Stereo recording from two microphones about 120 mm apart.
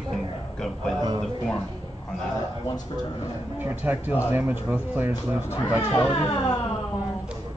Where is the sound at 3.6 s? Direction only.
15° right (ahead or behind).